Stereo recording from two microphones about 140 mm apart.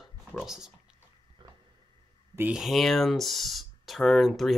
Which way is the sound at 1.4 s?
35° right (ahead or behind).